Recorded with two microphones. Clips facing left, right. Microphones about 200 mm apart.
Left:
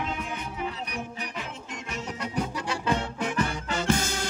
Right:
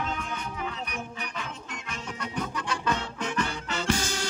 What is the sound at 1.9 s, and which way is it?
Music, 25° left (ahead or behind).